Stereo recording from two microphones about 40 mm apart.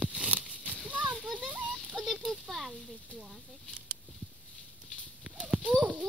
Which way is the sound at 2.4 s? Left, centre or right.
Centre.